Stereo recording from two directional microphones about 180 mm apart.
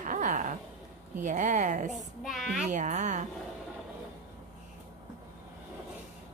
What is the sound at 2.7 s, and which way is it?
Speech, 40° right (ahead or behind).